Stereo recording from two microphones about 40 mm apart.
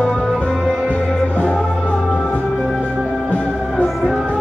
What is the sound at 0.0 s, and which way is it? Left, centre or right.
Music, centre.